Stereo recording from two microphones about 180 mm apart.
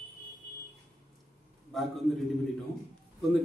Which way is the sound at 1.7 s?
Centre (ahead or behind).